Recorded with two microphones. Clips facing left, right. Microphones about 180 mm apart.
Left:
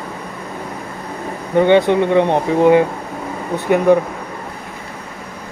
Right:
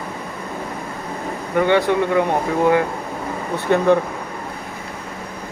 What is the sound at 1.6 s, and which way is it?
Speech, 20° left (ahead or behind).